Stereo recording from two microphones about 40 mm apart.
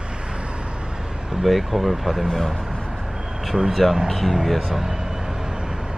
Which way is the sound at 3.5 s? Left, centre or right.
Centre.